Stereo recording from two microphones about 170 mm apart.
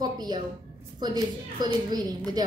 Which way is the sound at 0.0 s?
25° right (ahead or behind).